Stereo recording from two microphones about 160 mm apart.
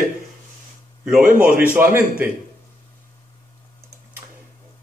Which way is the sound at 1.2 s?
60° right (ahead or behind).